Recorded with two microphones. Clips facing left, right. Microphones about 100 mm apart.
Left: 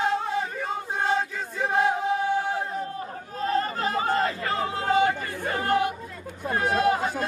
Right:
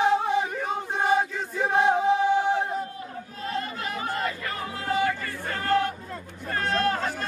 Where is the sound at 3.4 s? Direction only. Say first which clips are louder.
Left 6 dB; 35° left (ahead or behind).